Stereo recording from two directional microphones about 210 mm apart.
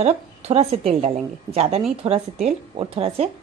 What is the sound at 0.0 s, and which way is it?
A woman's voice, 30° right (ahead or behind).